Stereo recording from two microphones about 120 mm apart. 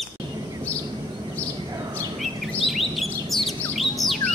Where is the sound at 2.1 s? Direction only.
Centre (ahead or behind).